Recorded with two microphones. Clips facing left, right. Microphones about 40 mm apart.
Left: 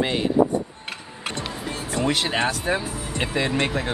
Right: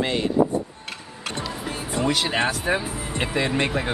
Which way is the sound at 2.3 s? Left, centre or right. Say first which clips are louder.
Even; centre.